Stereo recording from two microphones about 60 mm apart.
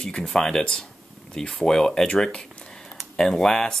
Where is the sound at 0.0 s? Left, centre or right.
Centre.